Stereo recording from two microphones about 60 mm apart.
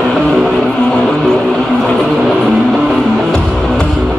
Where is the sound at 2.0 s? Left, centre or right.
Centre.